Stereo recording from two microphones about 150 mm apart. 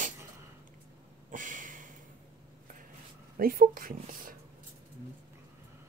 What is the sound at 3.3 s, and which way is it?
Speech, 75° right (ahead or behind).